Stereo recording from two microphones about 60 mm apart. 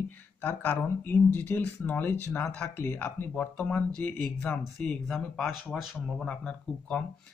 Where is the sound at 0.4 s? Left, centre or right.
Left.